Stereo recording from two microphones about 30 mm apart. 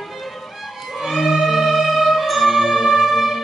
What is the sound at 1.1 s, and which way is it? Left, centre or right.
Music, centre.